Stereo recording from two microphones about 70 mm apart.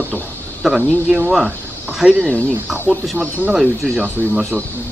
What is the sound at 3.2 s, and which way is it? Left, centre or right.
Speech, centre.